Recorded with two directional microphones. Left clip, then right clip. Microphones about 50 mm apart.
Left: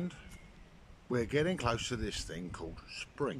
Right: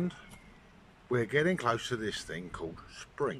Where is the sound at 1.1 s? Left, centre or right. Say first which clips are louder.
Right 3 dB; left.